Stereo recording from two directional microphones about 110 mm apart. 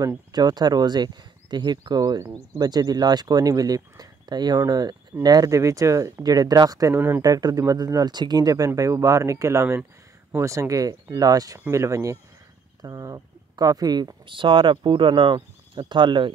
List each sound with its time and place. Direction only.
0.0 s speech: 35° right (ahead or behind)